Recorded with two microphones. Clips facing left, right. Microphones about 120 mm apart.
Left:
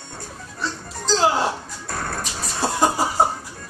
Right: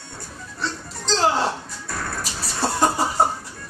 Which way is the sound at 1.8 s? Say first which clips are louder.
Left 2 dB; 45° left (ahead or behind).